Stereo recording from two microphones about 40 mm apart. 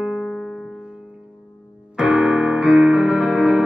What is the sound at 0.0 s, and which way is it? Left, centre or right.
Piano, right.